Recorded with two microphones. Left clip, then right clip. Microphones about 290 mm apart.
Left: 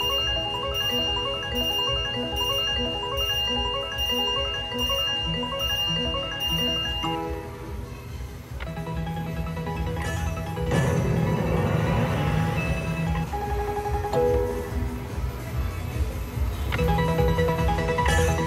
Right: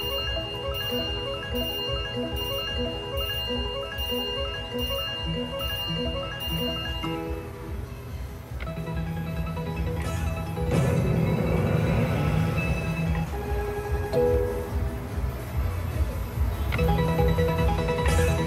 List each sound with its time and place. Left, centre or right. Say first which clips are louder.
0.0 s music: left 5 dB; centre
10.7 s music: left 1 dB; centre
16.7 s music: left 1 dB; centre